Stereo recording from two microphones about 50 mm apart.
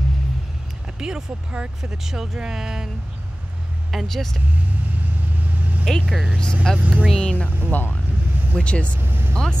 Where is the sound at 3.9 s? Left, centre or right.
Centre.